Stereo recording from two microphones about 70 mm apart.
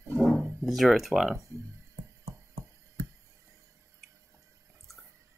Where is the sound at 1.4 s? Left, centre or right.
Right.